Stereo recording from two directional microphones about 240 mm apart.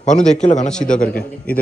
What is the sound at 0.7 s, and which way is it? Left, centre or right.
Speech, centre.